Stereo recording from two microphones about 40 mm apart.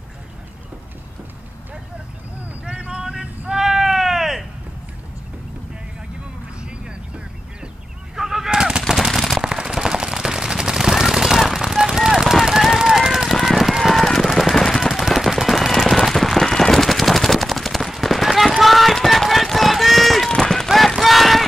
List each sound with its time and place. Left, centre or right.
2.6 s vehicle: right
3.0 s a sound: centre
8.2 s gunshot: centre
8.5 s machine gun: centre
8.8 s machine gun: centre
9.4 s machine gun: centre
12.6 s a sound: centre
13.3 s run: centre
14.5 s machine gun: centre
18.6 s run: centre
20.2 s run: centre
20.6 s run: centre